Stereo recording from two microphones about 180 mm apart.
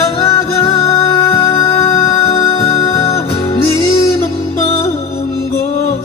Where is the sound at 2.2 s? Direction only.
25° left (ahead or behind).